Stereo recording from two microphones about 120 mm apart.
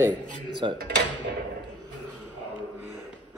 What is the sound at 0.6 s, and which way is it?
Speech, 40° right (ahead or behind).